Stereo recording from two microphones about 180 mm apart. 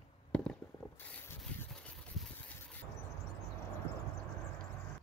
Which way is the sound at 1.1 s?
10° left (ahead or behind).